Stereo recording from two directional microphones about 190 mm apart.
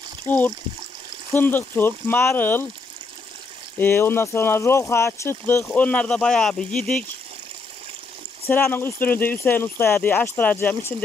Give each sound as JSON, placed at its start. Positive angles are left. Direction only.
{"t": 0.3, "sound": "speech", "side_deg": 10}
{"t": 3.7, "sound": "speech", "side_deg": 10}
{"t": 8.5, "sound": "speech", "side_deg": 10}